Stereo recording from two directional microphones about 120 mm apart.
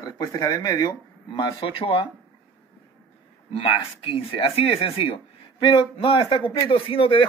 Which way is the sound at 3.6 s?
45° left (ahead or behind).